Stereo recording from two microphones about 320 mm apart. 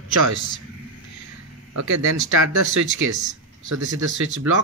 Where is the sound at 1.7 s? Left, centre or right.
Right.